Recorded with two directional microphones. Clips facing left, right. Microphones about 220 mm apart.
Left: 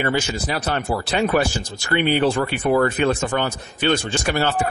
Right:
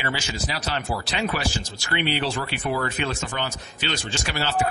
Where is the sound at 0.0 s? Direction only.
50° left (ahead or behind).